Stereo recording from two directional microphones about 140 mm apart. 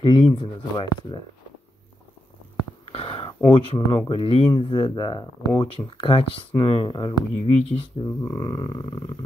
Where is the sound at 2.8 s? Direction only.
45° left (ahead or behind).